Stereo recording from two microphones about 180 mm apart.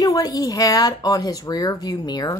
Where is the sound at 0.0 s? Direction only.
20° left (ahead or behind).